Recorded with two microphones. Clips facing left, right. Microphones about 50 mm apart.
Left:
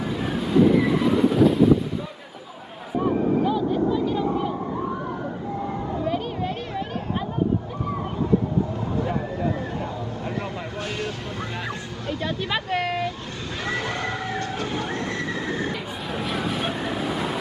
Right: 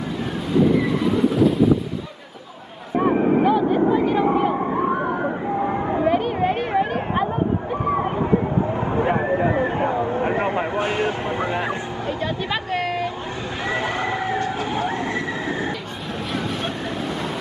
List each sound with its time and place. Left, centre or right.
0.0 s train: centre
3.4 s vehicle: right
6.0 s a sound: right
8.9 s vehicle: right
12.2 s a sound: centre
13.7 s vehicle: centre
15.7 s vehicle: centre